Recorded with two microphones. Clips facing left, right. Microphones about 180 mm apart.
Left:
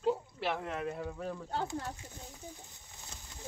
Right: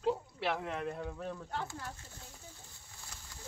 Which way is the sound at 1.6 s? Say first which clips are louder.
Left 6 dB; 20° left (ahead or behind).